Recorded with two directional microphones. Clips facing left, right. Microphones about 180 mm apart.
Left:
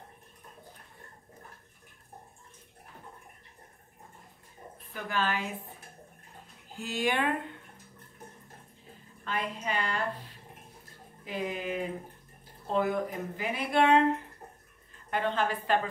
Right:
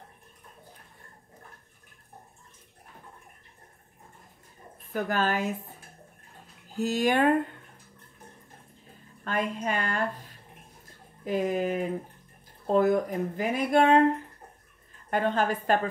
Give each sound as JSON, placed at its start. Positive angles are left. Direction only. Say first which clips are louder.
{"t": 4.9, "sound": "speech", "louder": "right 5 dB", "side_deg": -45}
{"t": 6.7, "sound": "speech", "louder": "right 6 dB", "side_deg": -40}
{"t": 9.2, "sound": "speech", "louder": "right 5 dB", "side_deg": -45}
{"t": 15.0, "sound": "a woman's voice", "louder": "right 4 dB", "side_deg": -45}